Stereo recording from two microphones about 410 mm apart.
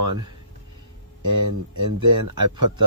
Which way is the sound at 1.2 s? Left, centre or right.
Right.